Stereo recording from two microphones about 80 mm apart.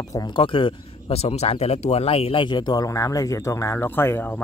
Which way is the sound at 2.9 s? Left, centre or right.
Left.